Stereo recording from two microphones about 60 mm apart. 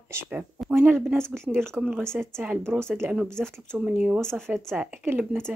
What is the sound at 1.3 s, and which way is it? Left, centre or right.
Speech, right.